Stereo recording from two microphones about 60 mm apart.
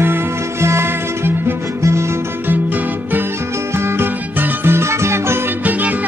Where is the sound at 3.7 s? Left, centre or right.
Right.